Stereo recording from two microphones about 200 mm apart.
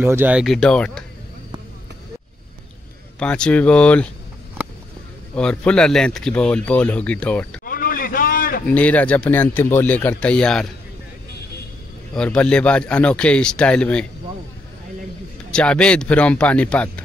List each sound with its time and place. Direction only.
0.0 s speech: 10° right (ahead or behind)
3.2 s speech: 5° left (ahead or behind)
5.3 s speech: 5° left (ahead or behind)
7.6 s a sound: 45° left (ahead or behind)
8.6 s speech: 5° left (ahead or behind)
12.1 s speech: 5° left (ahead or behind)
15.5 s speech: 5° left (ahead or behind)